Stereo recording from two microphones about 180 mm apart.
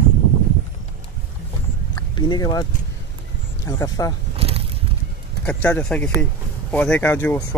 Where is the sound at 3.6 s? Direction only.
20° left (ahead or behind).